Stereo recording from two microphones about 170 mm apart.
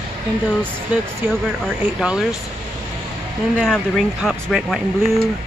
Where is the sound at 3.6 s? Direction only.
Centre (ahead or behind).